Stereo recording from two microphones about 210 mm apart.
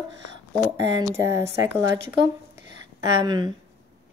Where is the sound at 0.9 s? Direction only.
15° right (ahead or behind).